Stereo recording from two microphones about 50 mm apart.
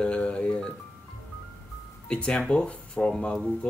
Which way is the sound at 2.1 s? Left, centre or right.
Left.